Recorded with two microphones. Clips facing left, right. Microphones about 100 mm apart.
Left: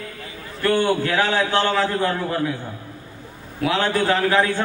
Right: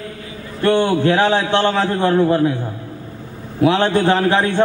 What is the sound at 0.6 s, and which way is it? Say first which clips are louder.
A man's voice: right 4 dB; 25° right (ahead or behind).